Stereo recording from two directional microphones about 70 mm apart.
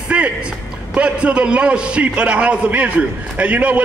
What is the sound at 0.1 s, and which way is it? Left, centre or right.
A man's voice, centre.